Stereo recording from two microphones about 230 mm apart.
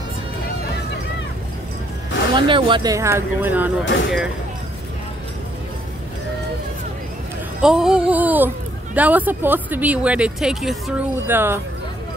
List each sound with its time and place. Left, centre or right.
2.3 s speech: right
3.8 s speech: left
7.6 s a sound: centre
8.9 s speech: centre